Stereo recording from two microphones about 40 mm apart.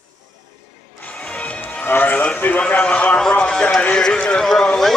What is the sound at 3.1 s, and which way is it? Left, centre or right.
A man's voice, left.